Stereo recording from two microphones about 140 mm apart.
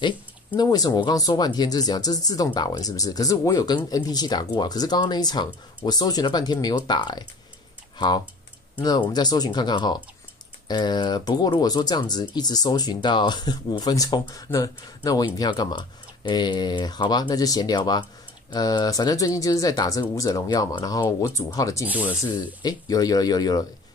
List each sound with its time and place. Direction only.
0.6 s speech: 30° left (ahead or behind)